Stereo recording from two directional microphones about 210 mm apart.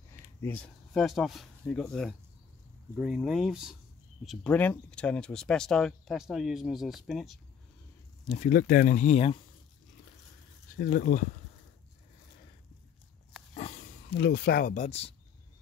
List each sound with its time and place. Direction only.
0.4 s speech: 5° left (ahead or behind)
8.3 s speech: 40° left (ahead or behind)
10.8 s speech: 40° left (ahead or behind)
14.1 s speech: 50° left (ahead or behind); by 15.1 s 30° left (ahead or behind)